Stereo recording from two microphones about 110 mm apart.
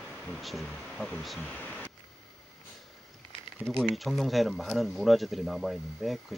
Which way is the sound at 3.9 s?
Centre (ahead or behind).